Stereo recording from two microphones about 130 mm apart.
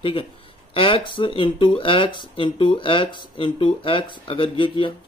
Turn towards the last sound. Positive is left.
turn(degrees=40)  # may be behind; listen again after turning